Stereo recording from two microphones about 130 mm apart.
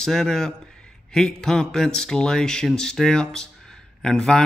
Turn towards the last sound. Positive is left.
turn(degrees=5)  # may be behind; listen again after turning